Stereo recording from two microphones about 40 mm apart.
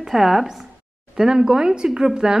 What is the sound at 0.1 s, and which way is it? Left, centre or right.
A woman's voice, centre.